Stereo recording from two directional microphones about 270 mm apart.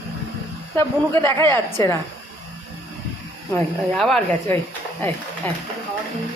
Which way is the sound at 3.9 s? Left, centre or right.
Centre.